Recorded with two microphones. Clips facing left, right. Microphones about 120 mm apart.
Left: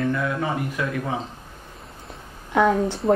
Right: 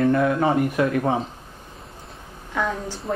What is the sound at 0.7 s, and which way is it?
Speech, 45° right (ahead or behind).